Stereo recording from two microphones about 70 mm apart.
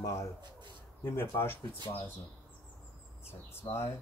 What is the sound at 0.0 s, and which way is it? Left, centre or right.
Speech, left.